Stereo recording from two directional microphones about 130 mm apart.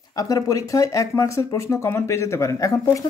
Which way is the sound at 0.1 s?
25° left (ahead or behind).